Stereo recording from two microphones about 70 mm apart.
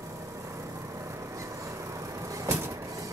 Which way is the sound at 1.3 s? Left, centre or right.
Right.